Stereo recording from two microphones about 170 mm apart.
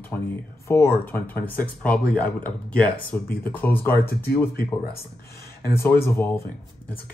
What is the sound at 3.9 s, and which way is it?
Speech, 65° left (ahead or behind).